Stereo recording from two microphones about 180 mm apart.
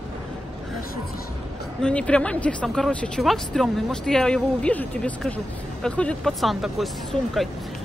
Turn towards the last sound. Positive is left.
turn(degrees=0)  # may be behind; listen again after turning